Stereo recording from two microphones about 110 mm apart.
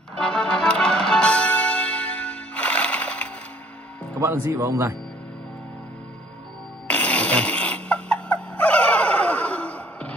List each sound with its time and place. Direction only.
0.2 s music: 5° left (ahead or behind)
4.2 s speech: 25° right (ahead or behind)
6.9 s snoring: 10° left (ahead or behind)